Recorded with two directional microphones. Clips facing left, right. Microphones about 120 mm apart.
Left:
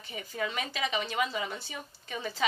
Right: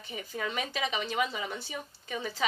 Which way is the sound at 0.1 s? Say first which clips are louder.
Even; 10° right (ahead or behind).